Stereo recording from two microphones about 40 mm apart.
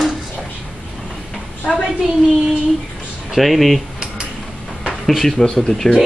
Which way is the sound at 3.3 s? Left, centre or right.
Centre.